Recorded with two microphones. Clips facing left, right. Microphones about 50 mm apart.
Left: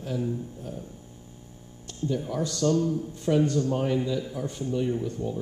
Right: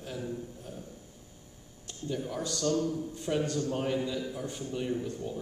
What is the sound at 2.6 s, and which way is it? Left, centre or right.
Speech, centre.